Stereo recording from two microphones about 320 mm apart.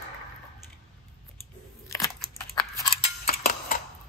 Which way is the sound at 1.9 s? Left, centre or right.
Centre.